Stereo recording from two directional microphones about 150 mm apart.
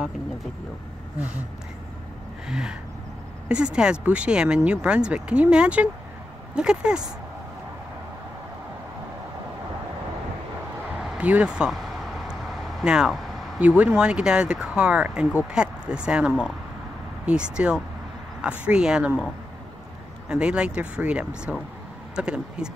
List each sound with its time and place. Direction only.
2.4 s speech: 5° right (ahead or behind)
11.0 s vehicle: 5° right (ahead or behind)
13.7 s speech: 10° right (ahead or behind)
20.2 s speech: 5° right (ahead or behind)